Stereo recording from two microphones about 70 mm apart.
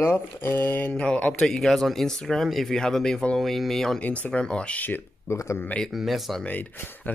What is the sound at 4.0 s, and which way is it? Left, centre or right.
Speech, centre.